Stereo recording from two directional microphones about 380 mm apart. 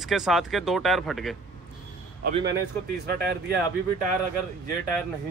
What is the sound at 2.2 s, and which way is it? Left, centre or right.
Speech, right.